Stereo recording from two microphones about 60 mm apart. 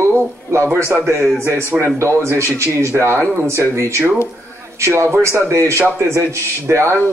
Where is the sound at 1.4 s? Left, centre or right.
Right.